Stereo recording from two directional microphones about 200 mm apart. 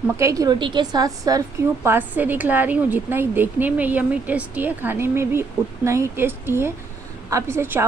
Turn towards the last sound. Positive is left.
turn(degrees=-10)  # may be behind; listen again after turning